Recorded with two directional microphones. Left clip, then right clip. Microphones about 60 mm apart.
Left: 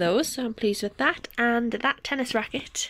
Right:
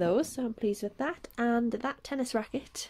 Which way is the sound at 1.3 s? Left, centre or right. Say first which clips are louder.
Left 2 dB; right.